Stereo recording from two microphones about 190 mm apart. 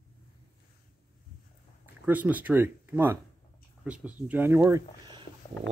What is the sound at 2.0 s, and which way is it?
Speech, 10° right (ahead or behind).